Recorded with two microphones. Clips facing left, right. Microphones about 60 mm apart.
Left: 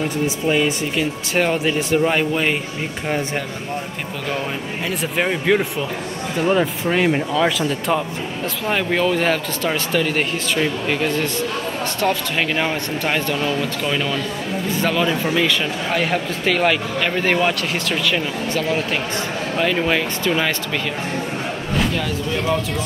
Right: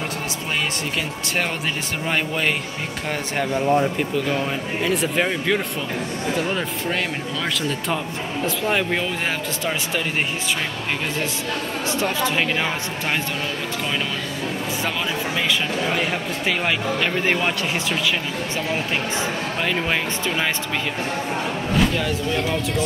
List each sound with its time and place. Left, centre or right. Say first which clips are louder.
0.5 s speech: left 5 dB; centre
4.8 s speech: even; centre
15.3 s speech: left 3 dB; centre
19.6 s speech: left 5 dB; centre
21.9 s speech: even; centre